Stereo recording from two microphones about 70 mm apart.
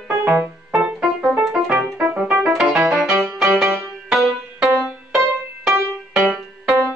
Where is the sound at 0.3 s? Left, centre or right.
Centre.